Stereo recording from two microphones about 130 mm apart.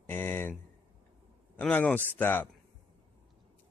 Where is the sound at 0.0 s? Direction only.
15° left (ahead or behind).